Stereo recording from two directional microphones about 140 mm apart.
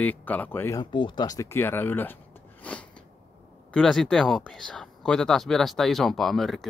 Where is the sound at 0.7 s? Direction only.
35° left (ahead or behind); by 2.1 s 15° left (ahead or behind).